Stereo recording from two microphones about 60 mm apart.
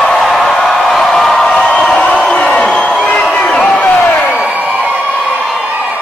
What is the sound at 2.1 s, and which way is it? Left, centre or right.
Crowd, left.